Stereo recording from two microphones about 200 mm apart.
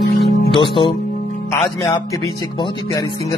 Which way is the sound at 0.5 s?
25° left (ahead or behind).